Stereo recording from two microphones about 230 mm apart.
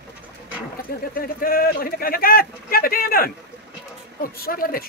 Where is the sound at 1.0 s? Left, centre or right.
Left.